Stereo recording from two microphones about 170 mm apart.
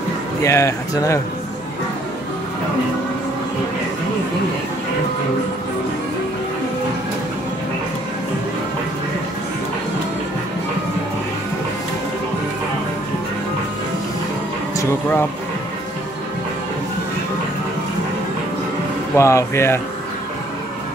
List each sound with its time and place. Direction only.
0.4 s speech: 15° left (ahead or behind)
14.8 s speech: 15° left (ahead or behind)
19.1 s speech: 15° left (ahead or behind)